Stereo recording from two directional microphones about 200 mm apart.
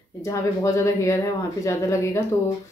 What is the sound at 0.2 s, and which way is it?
Speech, 15° left (ahead or behind).